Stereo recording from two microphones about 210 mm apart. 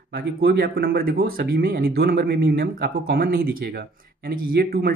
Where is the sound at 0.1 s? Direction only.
45° right (ahead or behind).